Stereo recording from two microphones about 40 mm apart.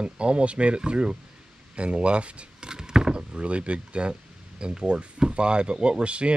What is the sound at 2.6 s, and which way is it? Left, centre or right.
Speech, centre.